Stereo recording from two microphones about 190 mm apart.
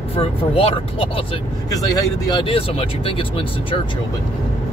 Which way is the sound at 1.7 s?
20° left (ahead or behind).